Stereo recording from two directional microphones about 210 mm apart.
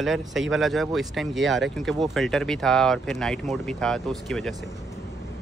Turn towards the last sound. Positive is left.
turn(degrees=0)  # may be behind; listen again after turning